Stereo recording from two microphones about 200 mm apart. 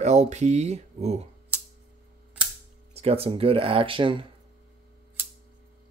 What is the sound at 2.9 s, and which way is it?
Speech, 30° right (ahead or behind).